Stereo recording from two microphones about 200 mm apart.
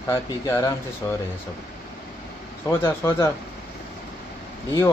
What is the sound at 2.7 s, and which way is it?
Speech, 10° left (ahead or behind).